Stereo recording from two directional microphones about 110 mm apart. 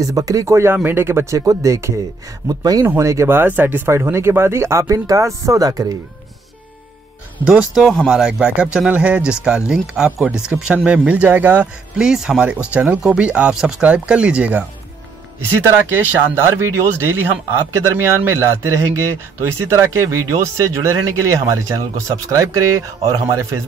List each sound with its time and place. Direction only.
0.0 s speech: 30° right (ahead or behind)
7.4 s speech: 5° right (ahead or behind)
16.1 s speech: 25° right (ahead or behind)